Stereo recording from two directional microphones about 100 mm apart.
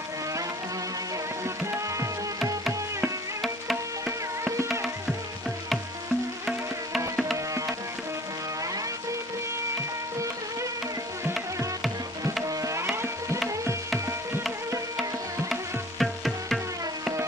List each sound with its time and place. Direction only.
12.4 s music: 30° right (ahead or behind)
15.5 s music: centre (ahead or behind)